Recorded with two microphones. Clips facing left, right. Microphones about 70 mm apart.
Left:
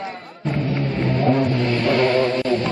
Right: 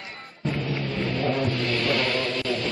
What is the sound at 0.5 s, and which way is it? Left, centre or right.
Music, left.